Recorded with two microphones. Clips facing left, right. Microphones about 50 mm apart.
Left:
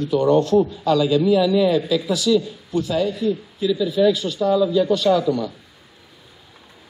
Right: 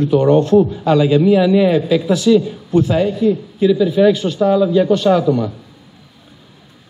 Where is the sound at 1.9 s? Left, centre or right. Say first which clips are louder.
Right 6 dB; right.